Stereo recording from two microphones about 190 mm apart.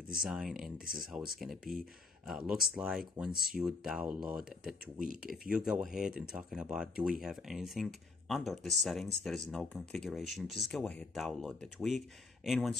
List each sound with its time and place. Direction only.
0.2 s speech: centre (ahead or behind)